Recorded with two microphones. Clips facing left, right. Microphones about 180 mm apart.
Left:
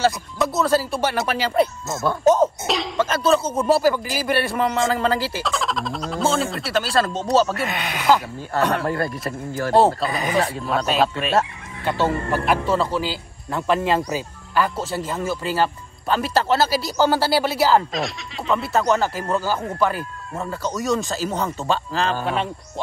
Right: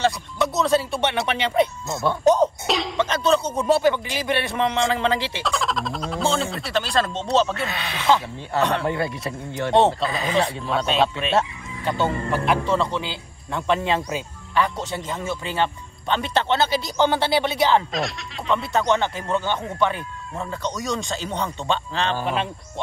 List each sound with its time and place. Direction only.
0.0 s speech: centre (ahead or behind)